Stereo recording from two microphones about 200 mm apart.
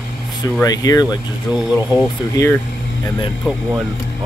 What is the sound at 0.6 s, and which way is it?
Speech, 20° left (ahead or behind).